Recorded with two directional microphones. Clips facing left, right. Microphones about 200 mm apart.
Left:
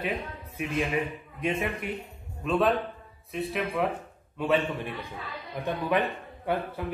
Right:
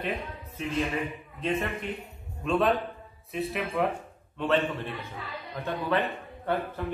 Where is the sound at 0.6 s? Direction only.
10° left (ahead or behind).